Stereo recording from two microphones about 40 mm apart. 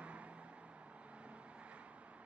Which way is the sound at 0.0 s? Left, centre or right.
Right.